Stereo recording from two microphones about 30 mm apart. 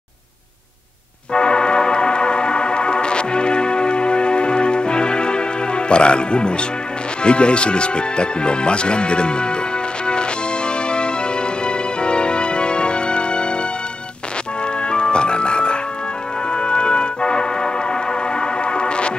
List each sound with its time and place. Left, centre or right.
1.3 s music: left
7.2 s speech: left
10.0 s music: left
14.8 s music: left